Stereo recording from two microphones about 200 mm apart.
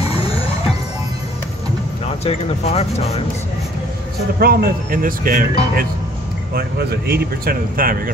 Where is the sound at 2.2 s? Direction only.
30° left (ahead or behind).